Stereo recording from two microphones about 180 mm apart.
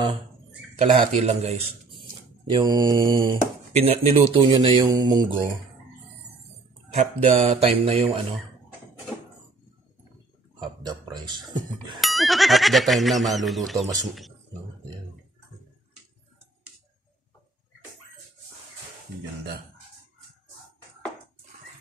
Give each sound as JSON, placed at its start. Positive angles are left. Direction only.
{"t": 0.7, "sound": "speech", "side_deg": -35}
{"t": 2.5, "sound": "mantra", "side_deg": -20}
{"t": 3.7, "sound": "speech", "side_deg": -35}
{"t": 4.8, "sound": "mantra", "side_deg": -20}
{"t": 7.0, "sound": "speech", "side_deg": -35}
{"t": 10.6, "sound": "speech", "side_deg": -25}
{"t": 12.0, "sound": "speech", "side_deg": 0}